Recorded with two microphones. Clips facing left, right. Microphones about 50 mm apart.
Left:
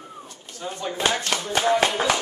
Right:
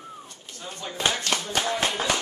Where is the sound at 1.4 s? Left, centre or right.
Left.